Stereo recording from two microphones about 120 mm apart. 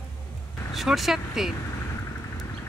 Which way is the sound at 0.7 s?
Centre (ahead or behind).